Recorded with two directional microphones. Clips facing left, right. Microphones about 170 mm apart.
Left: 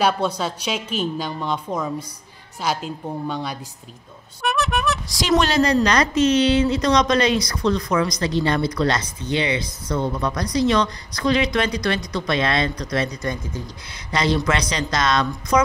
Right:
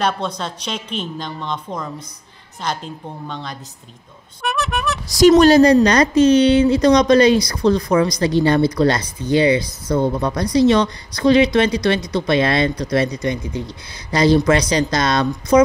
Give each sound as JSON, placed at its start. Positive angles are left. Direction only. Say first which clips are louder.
{"t": 0.0, "sound": "a woman's voice", "louder": "left 1 dB", "side_deg": 5}
{"t": 4.4, "sound": "a sound", "louder": "even", "side_deg": 0}
{"t": 5.4, "sound": "speech", "louder": "right 8 dB", "side_deg": -35}
{"t": 13.2, "sound": "speech", "louder": "right 5 dB", "side_deg": -20}
{"t": 14.1, "sound": "speech", "louder": "right 7 dB", "side_deg": -35}